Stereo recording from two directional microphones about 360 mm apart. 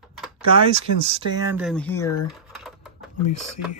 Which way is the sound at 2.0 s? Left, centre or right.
Left.